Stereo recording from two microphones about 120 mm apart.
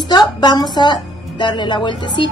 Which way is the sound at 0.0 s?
35° left (ahead or behind).